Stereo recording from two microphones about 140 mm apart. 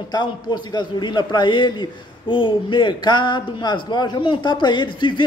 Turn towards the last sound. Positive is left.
turn(degrees=35)  # may be behind; listen again after turning